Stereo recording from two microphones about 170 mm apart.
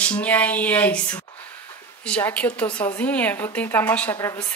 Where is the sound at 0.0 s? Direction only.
10° left (ahead or behind).